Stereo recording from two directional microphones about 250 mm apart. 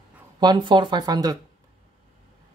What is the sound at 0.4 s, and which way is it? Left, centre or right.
Speech, centre.